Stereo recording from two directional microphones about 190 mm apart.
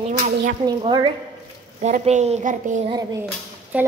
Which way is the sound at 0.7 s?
20° right (ahead or behind).